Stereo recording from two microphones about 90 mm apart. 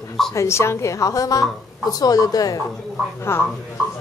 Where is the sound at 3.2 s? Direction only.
25° left (ahead or behind).